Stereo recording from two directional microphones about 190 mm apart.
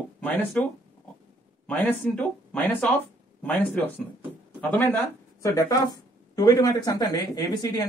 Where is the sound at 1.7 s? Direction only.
5° left (ahead or behind).